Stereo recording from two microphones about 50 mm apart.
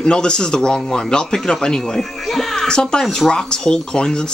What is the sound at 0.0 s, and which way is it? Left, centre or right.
A man's voice, centre.